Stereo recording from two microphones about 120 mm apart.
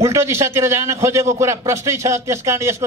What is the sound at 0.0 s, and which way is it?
A man's voice, 20° right (ahead or behind).